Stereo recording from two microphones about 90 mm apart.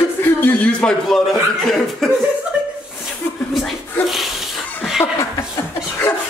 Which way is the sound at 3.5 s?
Centre (ahead or behind).